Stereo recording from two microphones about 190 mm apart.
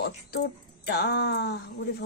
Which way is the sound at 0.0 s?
55° left (ahead or behind).